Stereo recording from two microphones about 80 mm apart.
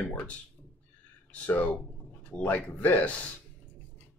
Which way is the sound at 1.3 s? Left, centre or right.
Centre.